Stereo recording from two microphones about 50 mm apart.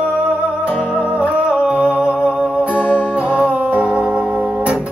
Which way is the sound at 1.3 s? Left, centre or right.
Centre.